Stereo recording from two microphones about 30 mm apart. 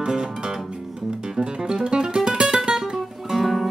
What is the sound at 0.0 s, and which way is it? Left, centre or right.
Music, right.